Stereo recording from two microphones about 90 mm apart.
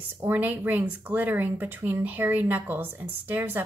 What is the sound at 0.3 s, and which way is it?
A woman's voice, 20° right (ahead or behind).